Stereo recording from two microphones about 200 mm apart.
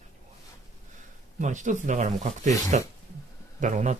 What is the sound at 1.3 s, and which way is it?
Speech, 40° right (ahead or behind).